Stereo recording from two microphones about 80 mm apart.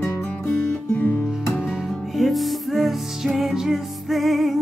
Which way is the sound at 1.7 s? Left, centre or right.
Centre.